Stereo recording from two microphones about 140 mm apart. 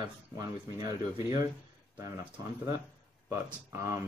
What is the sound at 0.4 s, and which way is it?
Speech, 25° right (ahead or behind).